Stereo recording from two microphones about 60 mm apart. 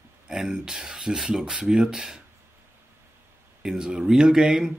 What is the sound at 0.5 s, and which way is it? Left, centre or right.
A man's voice, centre.